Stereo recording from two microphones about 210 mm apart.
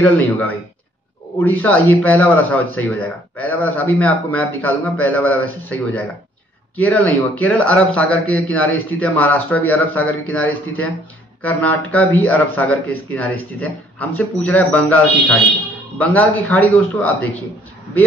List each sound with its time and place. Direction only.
0.0 s speech: 5° left (ahead or behind)